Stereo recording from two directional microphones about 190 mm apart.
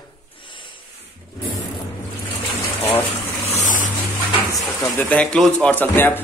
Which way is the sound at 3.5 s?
40° left (ahead or behind).